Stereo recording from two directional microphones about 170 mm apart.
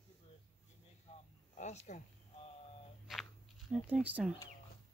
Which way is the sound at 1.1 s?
40° left (ahead or behind).